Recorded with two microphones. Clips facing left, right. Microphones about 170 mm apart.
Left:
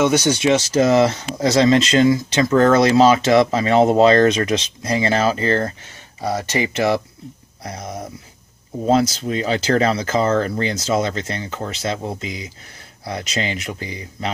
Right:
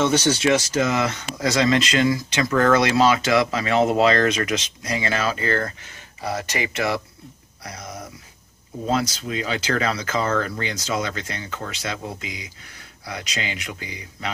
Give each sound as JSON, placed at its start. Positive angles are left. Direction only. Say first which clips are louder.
{"t": 0.0, "sound": "speech", "louder": "left 3 dB", "side_deg": 15}
{"t": 0.7, "sound": "speech", "louder": "left 7 dB", "side_deg": 35}